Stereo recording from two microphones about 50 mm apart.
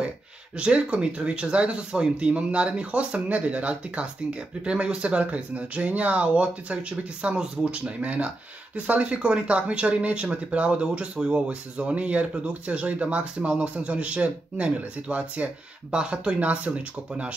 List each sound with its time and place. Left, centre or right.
0.6 s speech: right
7.8 s speech: right
9.0 s speech: right
16.3 s speech: right